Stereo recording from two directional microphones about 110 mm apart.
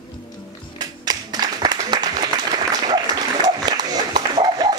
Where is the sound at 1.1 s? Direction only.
40° right (ahead or behind).